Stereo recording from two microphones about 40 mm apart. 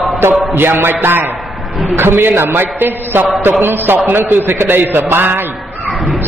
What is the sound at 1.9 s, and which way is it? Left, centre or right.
A man's voice, right.